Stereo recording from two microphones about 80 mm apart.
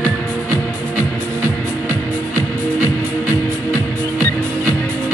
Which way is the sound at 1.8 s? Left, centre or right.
Right.